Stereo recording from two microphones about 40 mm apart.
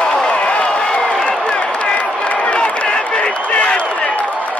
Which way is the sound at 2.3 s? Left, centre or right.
Left.